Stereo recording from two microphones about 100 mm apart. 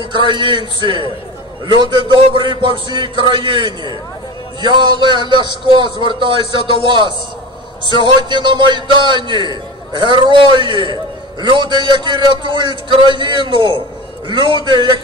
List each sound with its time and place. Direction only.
0.0 s a man's voice: 55° right (ahead or behind)